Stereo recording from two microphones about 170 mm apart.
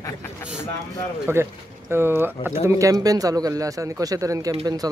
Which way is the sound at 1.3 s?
15° right (ahead or behind).